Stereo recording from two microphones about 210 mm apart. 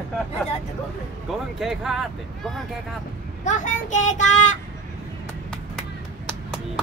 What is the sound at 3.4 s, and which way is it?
Speech, 35° left (ahead or behind).